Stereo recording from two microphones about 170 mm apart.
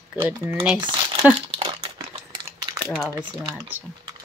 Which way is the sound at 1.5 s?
25° right (ahead or behind).